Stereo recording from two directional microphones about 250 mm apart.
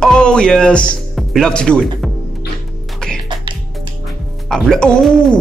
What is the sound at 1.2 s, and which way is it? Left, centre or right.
Speech, centre.